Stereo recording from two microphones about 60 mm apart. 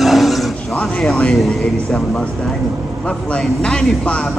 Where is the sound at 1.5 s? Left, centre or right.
Centre.